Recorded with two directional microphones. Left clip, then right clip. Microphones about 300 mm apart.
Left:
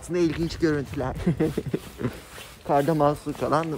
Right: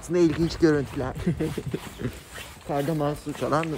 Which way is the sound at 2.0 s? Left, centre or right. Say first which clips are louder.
Left 4 dB; centre.